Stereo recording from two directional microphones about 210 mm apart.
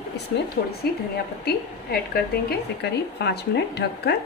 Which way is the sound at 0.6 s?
50° left (ahead or behind).